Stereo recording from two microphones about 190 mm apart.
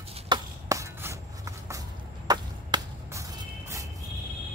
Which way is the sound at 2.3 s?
20° right (ahead or behind).